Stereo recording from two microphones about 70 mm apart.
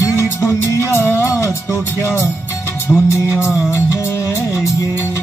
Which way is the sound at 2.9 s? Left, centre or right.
Left.